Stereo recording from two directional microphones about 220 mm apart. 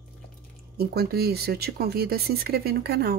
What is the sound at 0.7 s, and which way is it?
Speech, 45° right (ahead or behind).